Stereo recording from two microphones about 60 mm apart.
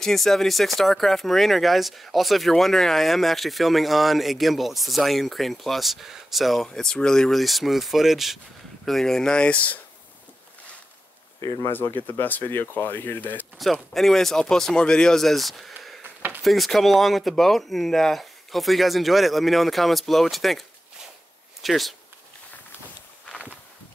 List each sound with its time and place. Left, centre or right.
0.0 s speech: centre
6.7 s speech: centre
11.4 s speech: left
11.7 s speech: left
13.6 s speech: centre
16.0 s a sound: right
16.4 s speech: centre